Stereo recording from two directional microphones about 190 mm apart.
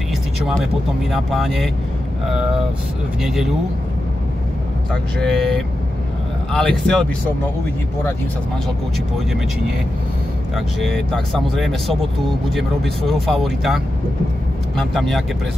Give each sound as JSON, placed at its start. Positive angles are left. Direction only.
{"t": 1.1, "sound": "speech", "side_deg": 0}
{"t": 5.2, "sound": "speech", "side_deg": 0}
{"t": 10.5, "sound": "speech", "side_deg": 0}
{"t": 14.8, "sound": "speech", "side_deg": 0}